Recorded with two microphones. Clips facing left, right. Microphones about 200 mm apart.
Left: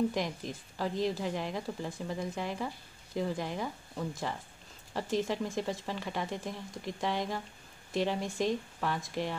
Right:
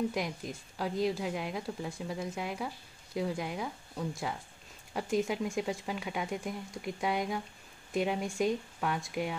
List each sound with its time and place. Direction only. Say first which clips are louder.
0.1 s a woman's voice: left 1 dB; 5° right (ahead or behind)